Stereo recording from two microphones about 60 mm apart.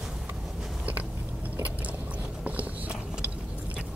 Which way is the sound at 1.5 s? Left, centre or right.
Right.